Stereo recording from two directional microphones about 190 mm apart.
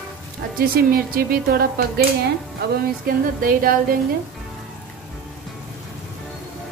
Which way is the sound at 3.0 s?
50° right (ahead or behind).